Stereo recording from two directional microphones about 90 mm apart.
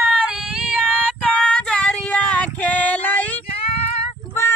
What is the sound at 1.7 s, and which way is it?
Female singing, 10° left (ahead or behind).